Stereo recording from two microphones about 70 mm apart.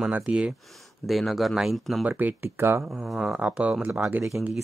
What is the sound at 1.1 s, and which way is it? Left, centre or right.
Speech, centre.